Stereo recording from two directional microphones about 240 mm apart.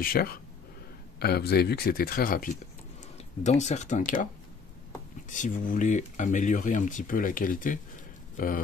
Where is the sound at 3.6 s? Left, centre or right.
Left.